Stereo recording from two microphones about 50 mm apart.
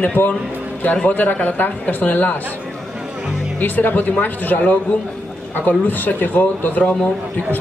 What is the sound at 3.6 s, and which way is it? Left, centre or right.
Speech, left.